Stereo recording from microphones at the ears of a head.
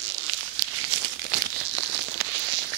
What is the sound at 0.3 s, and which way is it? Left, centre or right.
Crumpling, right.